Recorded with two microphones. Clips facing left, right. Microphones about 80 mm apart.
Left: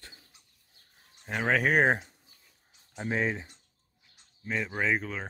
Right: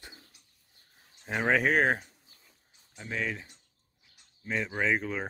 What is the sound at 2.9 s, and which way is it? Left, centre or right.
Speech, left.